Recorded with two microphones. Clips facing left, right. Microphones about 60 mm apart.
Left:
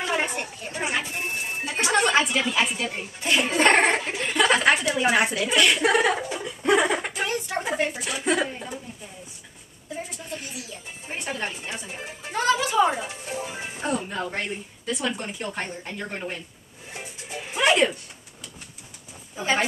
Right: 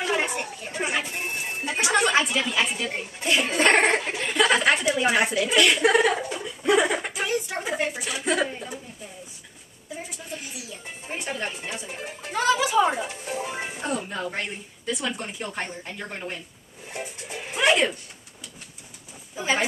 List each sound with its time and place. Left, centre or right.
0.0 s chatter: centre
0.7 s music: centre
1.7 s music: centre
2.1 s speech: centre
4.9 s a sound: centre
8.4 s speech: centre
11.1 s music: centre
12.4 s a sound: centre
13.7 s music: centre
14.3 s speech: centre
16.9 s music: centre
19.3 s a sound: centre